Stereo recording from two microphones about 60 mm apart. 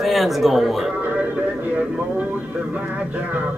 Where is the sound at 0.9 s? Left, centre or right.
Right.